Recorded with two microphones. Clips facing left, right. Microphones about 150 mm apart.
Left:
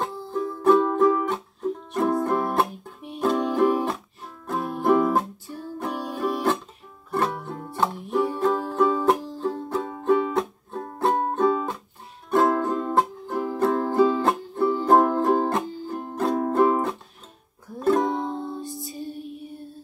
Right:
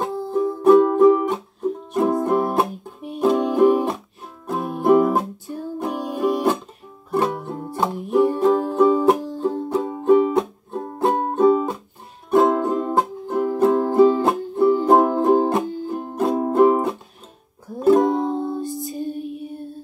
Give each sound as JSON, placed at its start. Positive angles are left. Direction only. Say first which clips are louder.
{"t": 0.7, "sound": "music", "louder": "right 6 dB", "side_deg": -5}
{"t": 18.9, "sound": "music", "louder": "right 7 dB", "side_deg": -50}
{"t": 19.2, "sound": "music", "louder": "right 6 dB", "side_deg": 0}